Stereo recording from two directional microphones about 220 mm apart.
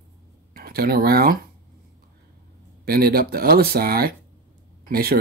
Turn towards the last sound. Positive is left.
turn(degrees=-45)  # may be behind; listen again after turning